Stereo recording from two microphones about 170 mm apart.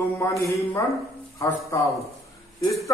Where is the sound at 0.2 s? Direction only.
20° left (ahead or behind).